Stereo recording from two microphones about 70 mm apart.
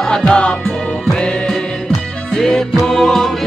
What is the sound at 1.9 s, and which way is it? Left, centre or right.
Music, centre.